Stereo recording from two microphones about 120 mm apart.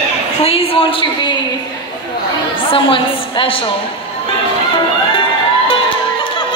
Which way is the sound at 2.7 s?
45° left (ahead or behind).